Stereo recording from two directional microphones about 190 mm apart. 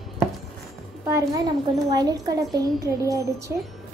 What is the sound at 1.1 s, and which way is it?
A woman's voice, 15° right (ahead or behind).